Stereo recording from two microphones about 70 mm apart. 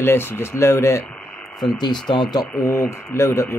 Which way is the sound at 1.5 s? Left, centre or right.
Left.